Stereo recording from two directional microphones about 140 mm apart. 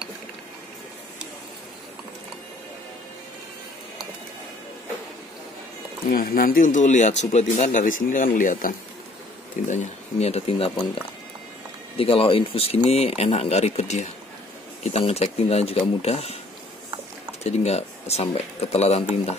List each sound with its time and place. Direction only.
6.1 s speech: 90° left
9.7 s speech: 55° left (ahead or behind)
12.0 s speech: 40° left (ahead or behind)
17.4 s speech: 50° left (ahead or behind)